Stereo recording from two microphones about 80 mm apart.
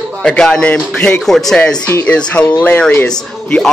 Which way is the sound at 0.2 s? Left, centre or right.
Centre.